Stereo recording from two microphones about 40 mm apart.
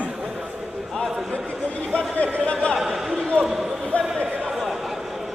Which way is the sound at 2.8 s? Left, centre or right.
Centre.